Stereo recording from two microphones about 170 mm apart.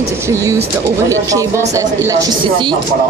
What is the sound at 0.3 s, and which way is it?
Speech, 15° right (ahead or behind).